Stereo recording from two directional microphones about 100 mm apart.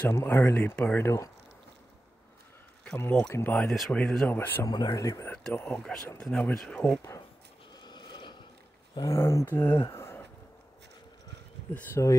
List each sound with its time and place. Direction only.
0.0 s speech: 25° left (ahead or behind)
3.3 s speech: 25° left (ahead or behind)
3.5 s speech: centre (ahead or behind)
4.3 s speech: 20° left (ahead or behind)
4.6 s speech: 45° left (ahead or behind)
5.3 s speech: 15° left (ahead or behind)
7.7 s a sound: 45° left (ahead or behind)
8.9 s speech: 35° left (ahead or behind)
9.7 s speech: 45° left (ahead or behind)
9.9 s a sound: 25° left (ahead or behind)
11.7 s speech: 20° left (ahead or behind)